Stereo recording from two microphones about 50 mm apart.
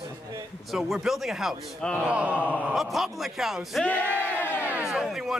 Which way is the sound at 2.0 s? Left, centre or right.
Right.